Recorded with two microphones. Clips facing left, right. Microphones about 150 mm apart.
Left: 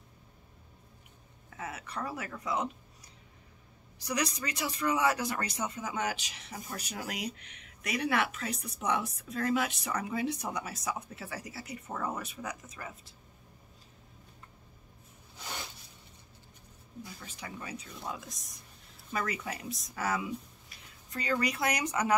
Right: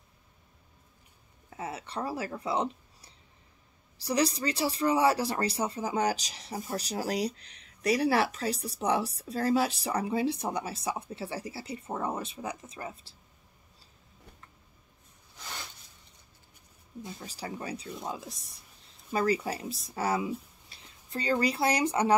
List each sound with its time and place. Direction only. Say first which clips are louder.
1.5 s speech: right 3 dB; 30° right (ahead or behind)
17.2 s speech: right 7 dB; 35° right (ahead or behind)